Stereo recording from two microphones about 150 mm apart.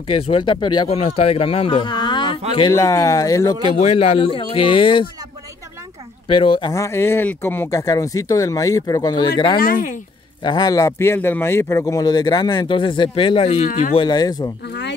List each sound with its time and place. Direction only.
0.1 s speech: 35° left (ahead or behind)
0.8 s speech: 40° left (ahead or behind)
2.7 s speech: 20° left (ahead or behind)
3.8 s speech: 40° left (ahead or behind)
6.2 s speech: 35° left (ahead or behind)
9.6 s speech: 70° left (ahead or behind)
10.4 s speech: 30° left (ahead or behind)
13.7 s speech: 65° left (ahead or behind)
13.9 s speech: 25° left (ahead or behind)